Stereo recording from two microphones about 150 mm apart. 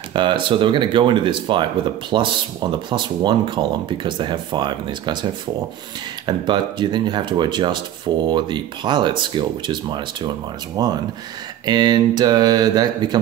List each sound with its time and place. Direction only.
0.1 s speech: 30° right (ahead or behind)
6.2 s speech: 30° right (ahead or behind)